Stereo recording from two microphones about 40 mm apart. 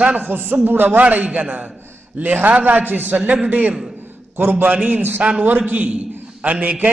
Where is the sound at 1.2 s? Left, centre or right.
Right.